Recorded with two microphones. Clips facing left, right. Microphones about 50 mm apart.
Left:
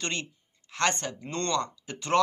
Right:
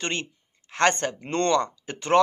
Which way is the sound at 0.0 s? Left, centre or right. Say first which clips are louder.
Right 4 dB; right.